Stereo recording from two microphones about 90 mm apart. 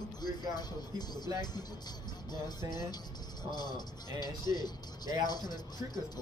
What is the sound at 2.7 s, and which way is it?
Speech, 50° left (ahead or behind).